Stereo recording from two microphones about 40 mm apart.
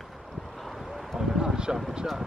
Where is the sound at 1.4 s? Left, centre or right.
Centre.